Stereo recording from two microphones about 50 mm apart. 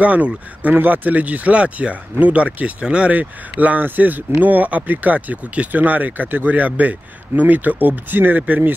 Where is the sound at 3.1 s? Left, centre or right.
Right.